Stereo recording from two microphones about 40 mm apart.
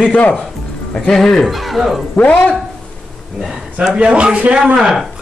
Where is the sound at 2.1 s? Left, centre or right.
Left.